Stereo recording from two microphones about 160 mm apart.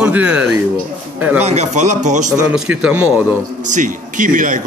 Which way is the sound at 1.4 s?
45° right (ahead or behind).